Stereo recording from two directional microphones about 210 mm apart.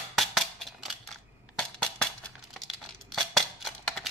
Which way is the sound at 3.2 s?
Centre (ahead or behind).